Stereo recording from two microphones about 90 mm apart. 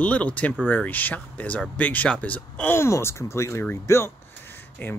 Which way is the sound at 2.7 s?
30° left (ahead or behind).